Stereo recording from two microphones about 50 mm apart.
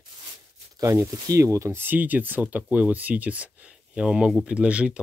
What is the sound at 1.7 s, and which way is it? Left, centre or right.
Speech, right.